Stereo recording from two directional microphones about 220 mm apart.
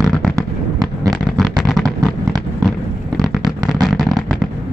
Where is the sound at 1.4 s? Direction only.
Centre (ahead or behind).